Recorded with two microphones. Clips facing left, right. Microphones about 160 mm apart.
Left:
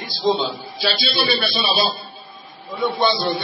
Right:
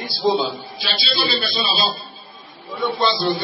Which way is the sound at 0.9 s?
60° left (ahead or behind).